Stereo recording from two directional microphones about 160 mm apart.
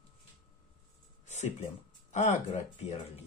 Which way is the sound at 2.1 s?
45° left (ahead or behind).